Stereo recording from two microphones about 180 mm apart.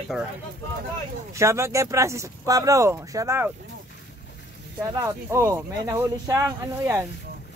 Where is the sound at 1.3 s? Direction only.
15° right (ahead or behind).